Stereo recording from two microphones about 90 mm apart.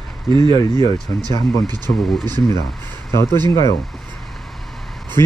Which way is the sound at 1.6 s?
50° right (ahead or behind).